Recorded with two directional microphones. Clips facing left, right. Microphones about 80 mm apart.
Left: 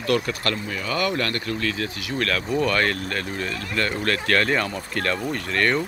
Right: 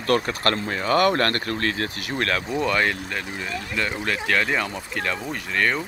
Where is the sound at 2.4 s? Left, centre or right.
Centre.